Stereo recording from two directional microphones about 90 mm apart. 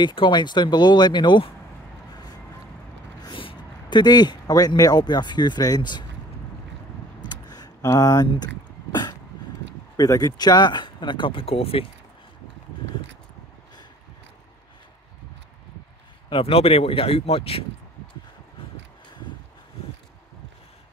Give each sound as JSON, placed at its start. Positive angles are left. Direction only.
{"t": 0.0, "sound": "speech", "side_deg": 60}
{"t": 3.3, "sound": "a sound", "side_deg": 75}
{"t": 4.0, "sound": "speech", "side_deg": 50}
{"t": 7.2, "sound": "a sound", "side_deg": 45}
{"t": 9.9, "sound": "speech", "side_deg": 40}
{"t": 16.3, "sound": "speech", "side_deg": 85}